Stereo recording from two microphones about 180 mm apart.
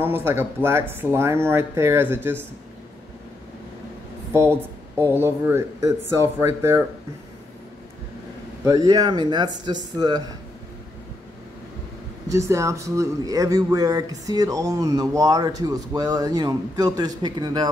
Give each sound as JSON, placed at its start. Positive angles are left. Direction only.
{"t": 0.0, "sound": "speech", "side_deg": -15}
{"t": 4.3, "sound": "speech", "side_deg": -15}
{"t": 8.6, "sound": "speech", "side_deg": -20}
{"t": 12.3, "sound": "speech", "side_deg": -15}